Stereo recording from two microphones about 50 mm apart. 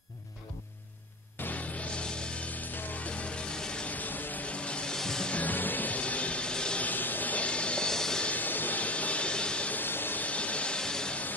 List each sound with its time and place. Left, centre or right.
1.4 s music: left
1.9 s music: left
3.8 s music: left; by 5.3 s centre
5.3 s music: left; by 6.8 s centre
6.8 s music: left; by 8.3 s centre
8.3 s vehicle: left
9.8 s vehicle: left
10.2 s music: left